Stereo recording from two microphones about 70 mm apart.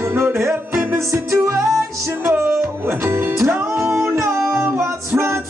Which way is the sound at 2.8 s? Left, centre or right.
Right.